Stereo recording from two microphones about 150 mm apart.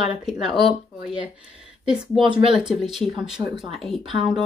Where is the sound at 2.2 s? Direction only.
35° right (ahead or behind).